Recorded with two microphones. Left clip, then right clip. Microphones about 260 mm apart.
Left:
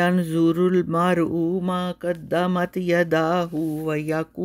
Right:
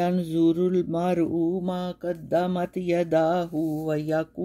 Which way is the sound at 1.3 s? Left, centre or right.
Left.